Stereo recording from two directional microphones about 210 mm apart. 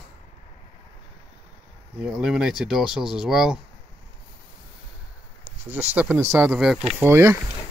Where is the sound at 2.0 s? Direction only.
Centre (ahead or behind).